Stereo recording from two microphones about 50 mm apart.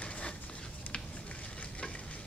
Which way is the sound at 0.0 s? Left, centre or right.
Left.